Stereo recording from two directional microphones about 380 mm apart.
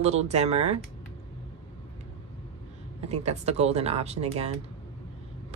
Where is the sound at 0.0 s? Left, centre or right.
Centre.